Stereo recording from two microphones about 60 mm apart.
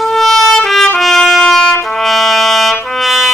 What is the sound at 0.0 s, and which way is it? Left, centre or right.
Trumpet, centre.